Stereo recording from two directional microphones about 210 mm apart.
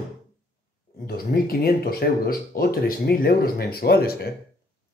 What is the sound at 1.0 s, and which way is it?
Speech, 45° left (ahead or behind).